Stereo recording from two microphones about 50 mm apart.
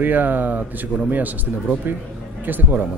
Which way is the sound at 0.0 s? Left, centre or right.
Right.